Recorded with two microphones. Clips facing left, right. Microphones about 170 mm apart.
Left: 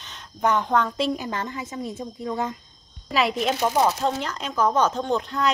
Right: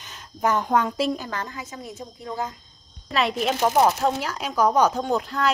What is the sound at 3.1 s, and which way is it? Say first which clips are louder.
Speech: left 1 dB; centre (ahead or behind).